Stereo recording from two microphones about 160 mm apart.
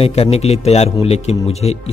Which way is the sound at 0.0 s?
40° left (ahead or behind).